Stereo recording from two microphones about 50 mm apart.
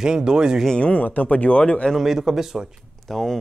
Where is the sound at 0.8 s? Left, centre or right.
Left.